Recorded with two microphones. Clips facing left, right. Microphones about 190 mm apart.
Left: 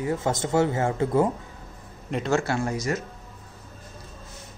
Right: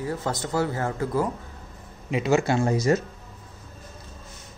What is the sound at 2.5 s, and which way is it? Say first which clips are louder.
Speech: right 5 dB; 30° right (ahead or behind).